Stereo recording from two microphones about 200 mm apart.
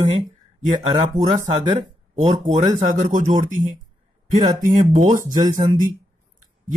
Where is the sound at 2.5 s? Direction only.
35° right (ahead or behind).